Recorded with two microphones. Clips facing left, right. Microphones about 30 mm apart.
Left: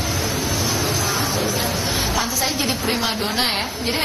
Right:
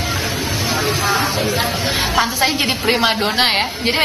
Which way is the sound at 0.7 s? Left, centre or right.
Right.